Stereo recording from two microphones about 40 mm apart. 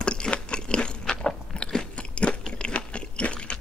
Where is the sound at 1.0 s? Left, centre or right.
Left.